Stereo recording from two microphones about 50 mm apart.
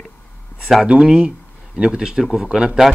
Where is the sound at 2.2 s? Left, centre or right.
Centre.